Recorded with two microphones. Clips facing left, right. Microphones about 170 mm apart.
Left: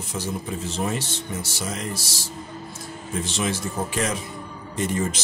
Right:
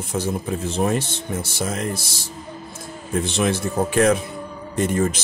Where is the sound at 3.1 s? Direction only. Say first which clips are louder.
Right 6 dB; 60° right (ahead or behind).